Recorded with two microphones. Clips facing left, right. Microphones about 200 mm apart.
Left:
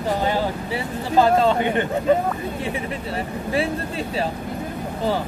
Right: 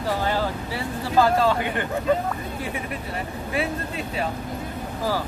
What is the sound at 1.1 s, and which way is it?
Speech, 25° left (ahead or behind).